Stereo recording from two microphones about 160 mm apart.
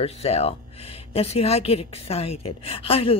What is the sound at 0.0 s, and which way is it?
A woman's voice, 40° left (ahead or behind).